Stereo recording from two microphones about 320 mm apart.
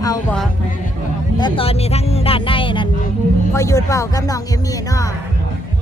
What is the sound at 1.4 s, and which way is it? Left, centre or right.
Speech, centre.